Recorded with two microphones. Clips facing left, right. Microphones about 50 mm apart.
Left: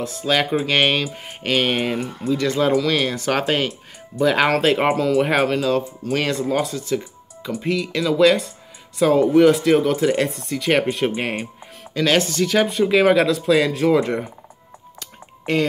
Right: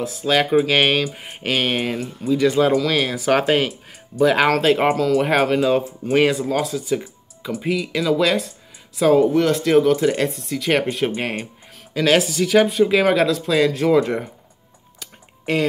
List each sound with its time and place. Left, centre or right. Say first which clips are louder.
0.0 s speech: right 1 dB; centre
2.0 s speech: left 2 dB; left
2.2 s speech: right 3 dB; centre
5.6 s speech: right 2 dB; centre
6.4 s speech: even; centre
15.0 s a sound: even; centre